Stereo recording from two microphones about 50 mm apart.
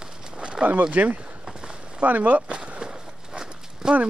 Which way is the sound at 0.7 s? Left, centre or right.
Right.